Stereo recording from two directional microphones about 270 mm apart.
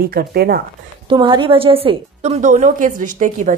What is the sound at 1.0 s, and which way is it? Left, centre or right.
A woman's voice, centre.